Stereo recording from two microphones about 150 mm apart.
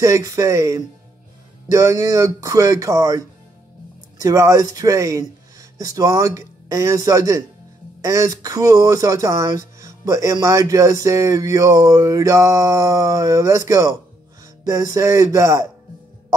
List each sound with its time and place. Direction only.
0.0 s speech: 20° right (ahead or behind)